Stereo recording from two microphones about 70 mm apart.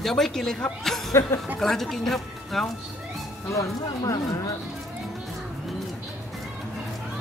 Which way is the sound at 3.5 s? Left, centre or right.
Left.